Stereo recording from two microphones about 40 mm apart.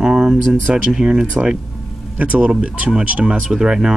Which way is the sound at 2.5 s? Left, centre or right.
Right.